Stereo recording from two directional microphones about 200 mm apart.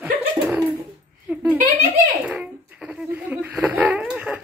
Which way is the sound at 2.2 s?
5° right (ahead or behind).